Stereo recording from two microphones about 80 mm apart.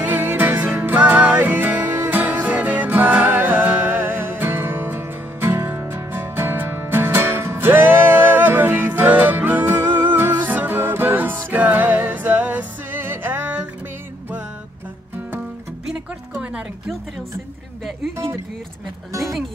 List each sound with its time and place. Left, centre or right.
0.0 s music: right
15.9 s music: centre